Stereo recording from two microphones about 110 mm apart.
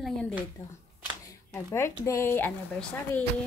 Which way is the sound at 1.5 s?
25° left (ahead or behind).